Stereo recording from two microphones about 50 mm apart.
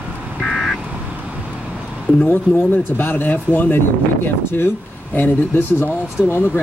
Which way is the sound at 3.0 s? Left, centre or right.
Left.